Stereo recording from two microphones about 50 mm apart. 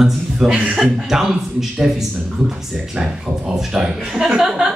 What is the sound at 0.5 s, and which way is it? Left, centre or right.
Speech, centre.